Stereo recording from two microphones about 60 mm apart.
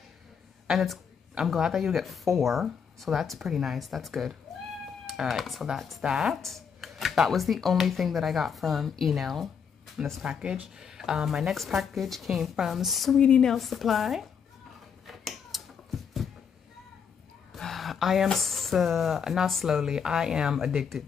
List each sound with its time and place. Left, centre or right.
0.7 s a woman's voice: centre
10.0 s a woman's voice: centre
10.8 s speech: centre
13.2 s speech: centre
13.5 s speech: centre
15.0 s finger snapping: centre
17.5 s a sound: centre
18.3 s a woman's voice: centre